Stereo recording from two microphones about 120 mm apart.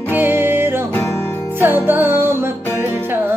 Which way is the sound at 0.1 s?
20° right (ahead or behind).